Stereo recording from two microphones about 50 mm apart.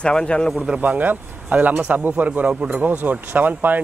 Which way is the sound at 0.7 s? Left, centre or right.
Right.